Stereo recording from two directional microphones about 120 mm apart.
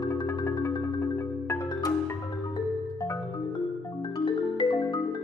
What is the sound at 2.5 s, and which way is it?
Music, 30° left (ahead or behind).